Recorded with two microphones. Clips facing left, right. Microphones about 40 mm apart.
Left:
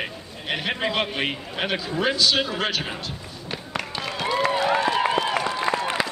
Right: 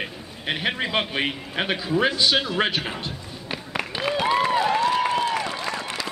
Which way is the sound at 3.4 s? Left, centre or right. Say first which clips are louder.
Right 1 dB; centre.